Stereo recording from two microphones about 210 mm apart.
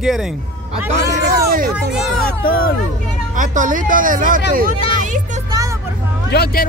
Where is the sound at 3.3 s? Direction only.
40° right (ahead or behind).